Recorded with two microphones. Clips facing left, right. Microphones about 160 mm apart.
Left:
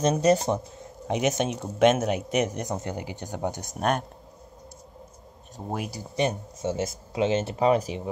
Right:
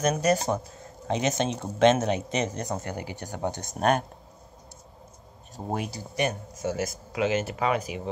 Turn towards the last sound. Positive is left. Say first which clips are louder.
# left 4 dB
turn(degrees=35)  # may be behind; listen again after turning